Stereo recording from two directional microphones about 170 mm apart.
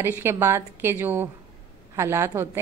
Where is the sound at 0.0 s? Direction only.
15° right (ahead or behind).